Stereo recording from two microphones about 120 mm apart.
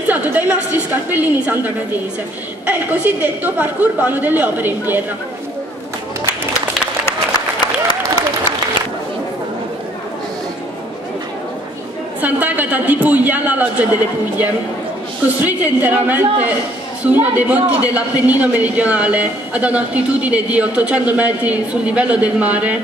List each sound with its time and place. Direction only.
0.0 s a woman's voice: 15° right (ahead or behind)
7.1 s applause: 35° left (ahead or behind)
12.2 s a man's voice: 15° right (ahead or behind)
15.4 s a woman's voice: 15° right (ahead or behind)